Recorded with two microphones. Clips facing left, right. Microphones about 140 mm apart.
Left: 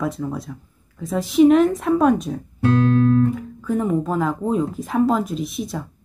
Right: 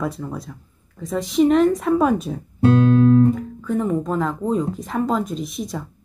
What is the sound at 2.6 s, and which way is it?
Music, 25° right (ahead or behind).